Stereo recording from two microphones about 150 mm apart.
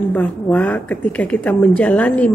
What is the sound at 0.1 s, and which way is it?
A woman's voice, 10° left (ahead or behind).